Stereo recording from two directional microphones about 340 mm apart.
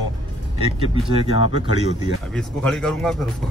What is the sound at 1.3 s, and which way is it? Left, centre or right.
Speech, left.